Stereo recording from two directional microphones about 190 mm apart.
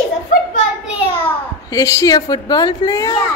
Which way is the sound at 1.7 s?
15° left (ahead or behind).